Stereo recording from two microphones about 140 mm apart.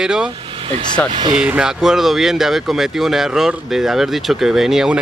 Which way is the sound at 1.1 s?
35° right (ahead or behind).